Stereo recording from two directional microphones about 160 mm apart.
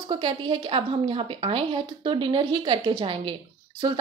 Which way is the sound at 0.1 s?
30° right (ahead or behind).